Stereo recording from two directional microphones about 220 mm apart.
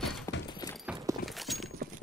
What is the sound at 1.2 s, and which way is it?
Clip-clop, centre (ahead or behind).